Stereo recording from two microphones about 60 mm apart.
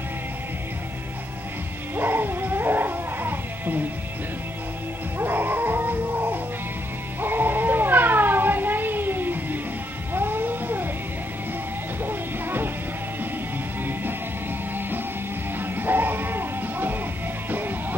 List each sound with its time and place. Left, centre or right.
2.0 s music: right
5.2 s music: right
7.2 s cat: right
12.0 s music: right
15.6 s music: right